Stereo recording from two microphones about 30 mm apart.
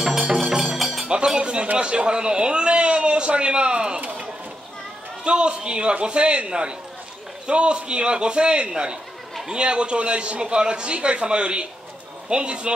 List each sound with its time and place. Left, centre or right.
0.7 s music: centre
1.0 s chink: right
1.8 s a man's voice: right
5.2 s a man's voice: right